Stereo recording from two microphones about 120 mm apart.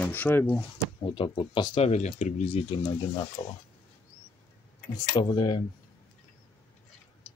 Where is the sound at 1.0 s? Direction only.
40° left (ahead or behind).